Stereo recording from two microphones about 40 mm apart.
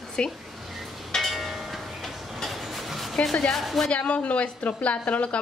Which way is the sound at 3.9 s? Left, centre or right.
Left.